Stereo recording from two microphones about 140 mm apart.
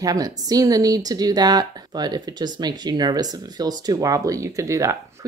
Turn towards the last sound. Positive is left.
turn(degrees=-20)  # may be behind; listen again after turning